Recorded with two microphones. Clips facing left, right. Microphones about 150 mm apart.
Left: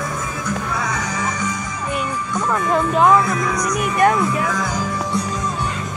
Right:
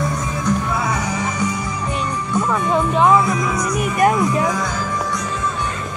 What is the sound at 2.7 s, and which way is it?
Speech, centre (ahead or behind).